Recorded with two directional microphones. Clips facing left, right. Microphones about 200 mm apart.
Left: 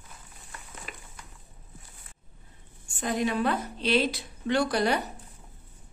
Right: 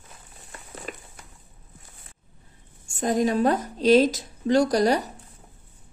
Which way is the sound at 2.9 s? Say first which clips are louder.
Right 5 dB; 40° right (ahead or behind).